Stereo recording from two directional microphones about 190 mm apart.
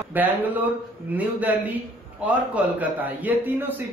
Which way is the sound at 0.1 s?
10° right (ahead or behind).